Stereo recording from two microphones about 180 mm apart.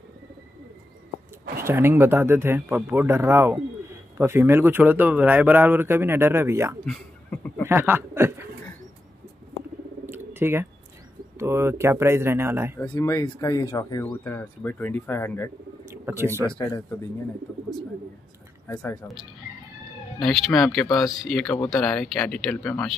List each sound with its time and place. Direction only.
1.6 s speech: 15° right (ahead or behind)
6.9 s a sound: 5° left (ahead or behind)
7.6 s speech: 10° right (ahead or behind)
10.0 s a sound: 15° right (ahead or behind)
11.3 s speech: 15° right (ahead or behind)
12.8 s speech: 10° left (ahead or behind)
15.8 s a sound: 15° right (ahead or behind)
18.8 s speech: 10° left (ahead or behind)
20.2 s speech: centre (ahead or behind)